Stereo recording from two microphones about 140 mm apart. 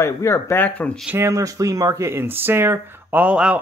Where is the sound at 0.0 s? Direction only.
20° left (ahead or behind).